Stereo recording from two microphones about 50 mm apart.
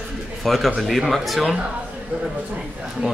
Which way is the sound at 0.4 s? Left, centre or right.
Centre.